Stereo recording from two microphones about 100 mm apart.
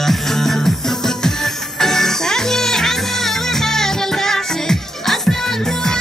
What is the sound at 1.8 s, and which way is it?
Music, 5° left (ahead or behind).